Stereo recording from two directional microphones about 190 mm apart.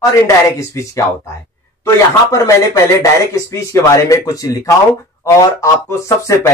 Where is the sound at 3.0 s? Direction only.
15° left (ahead or behind).